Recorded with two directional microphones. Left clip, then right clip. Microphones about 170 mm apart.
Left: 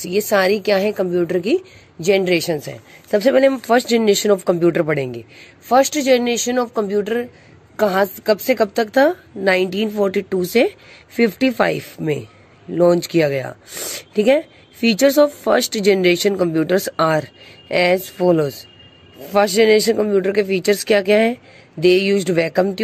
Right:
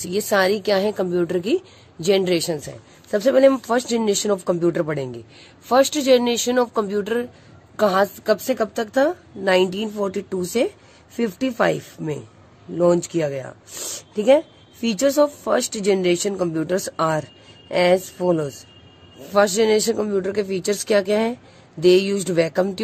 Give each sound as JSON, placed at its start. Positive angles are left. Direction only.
{"t": 0.0, "sound": "a woman's voice", "side_deg": 15}